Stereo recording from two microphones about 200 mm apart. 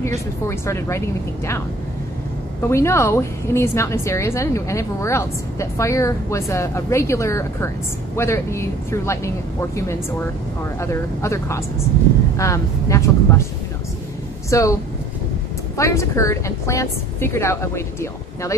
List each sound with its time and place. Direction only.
0.5 s a woman's voice: 15° left (ahead or behind)
2.7 s a woman's voice: 15° left (ahead or behind)
14.5 s a woman's voice: 15° left (ahead or behind)